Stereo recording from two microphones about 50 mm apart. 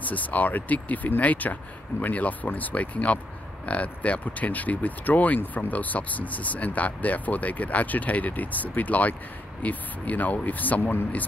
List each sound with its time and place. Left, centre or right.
0.0 s speech: left